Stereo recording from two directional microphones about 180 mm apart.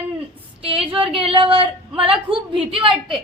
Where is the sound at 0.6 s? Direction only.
30° right (ahead or behind).